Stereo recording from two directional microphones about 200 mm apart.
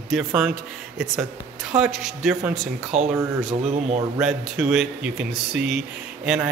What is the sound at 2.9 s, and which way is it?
Speech, 35° right (ahead or behind).